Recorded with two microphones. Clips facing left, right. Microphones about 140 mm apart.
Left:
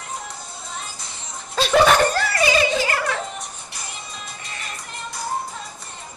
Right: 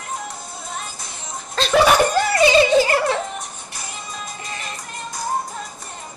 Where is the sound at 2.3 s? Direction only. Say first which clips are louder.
Right 6 dB; 25° right (ahead or behind).